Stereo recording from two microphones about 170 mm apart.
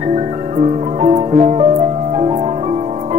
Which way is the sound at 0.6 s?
40° right (ahead or behind).